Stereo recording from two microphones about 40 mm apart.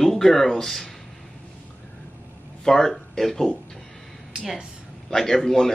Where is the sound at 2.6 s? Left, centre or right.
Centre.